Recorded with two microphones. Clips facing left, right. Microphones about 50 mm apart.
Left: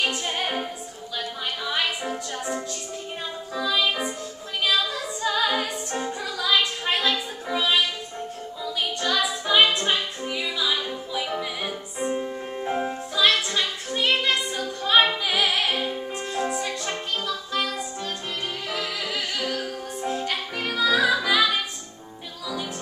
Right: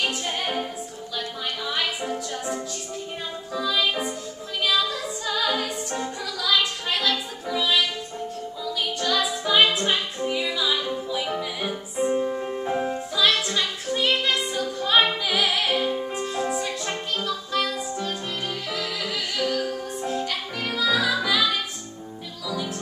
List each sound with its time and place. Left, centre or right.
0.0 s music: centre
9.0 s music: centre
12.3 s music: centre
12.5 s music: centre
18.9 s music: centre